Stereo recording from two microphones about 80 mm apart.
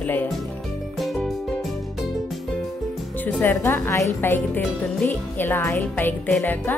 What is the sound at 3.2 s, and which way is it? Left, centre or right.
A woman's voice, left.